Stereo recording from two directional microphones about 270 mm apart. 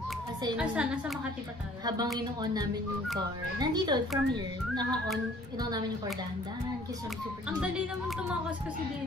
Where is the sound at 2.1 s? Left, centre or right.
Centre.